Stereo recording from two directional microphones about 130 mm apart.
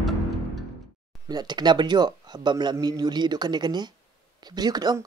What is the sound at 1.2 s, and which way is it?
Speech, 30° right (ahead or behind).